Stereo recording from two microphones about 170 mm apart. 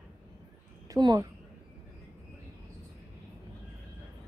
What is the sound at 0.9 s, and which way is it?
Speech, 20° right (ahead or behind).